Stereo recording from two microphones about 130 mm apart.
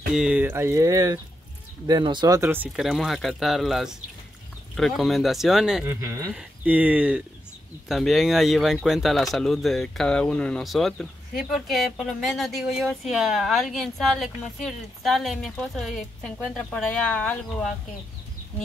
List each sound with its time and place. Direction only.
0.1 s speech: 5° right (ahead or behind)
2.7 s speech: centre (ahead or behind)
5.9 s speech: 20° right (ahead or behind)
6.3 s speech: 10° right (ahead or behind); by 17.4 s 10° left (ahead or behind)